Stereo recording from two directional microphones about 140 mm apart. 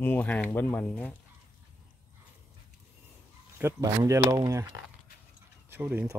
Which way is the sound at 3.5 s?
20° right (ahead or behind).